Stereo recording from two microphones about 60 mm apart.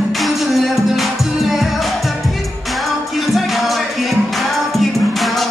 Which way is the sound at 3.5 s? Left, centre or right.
Centre.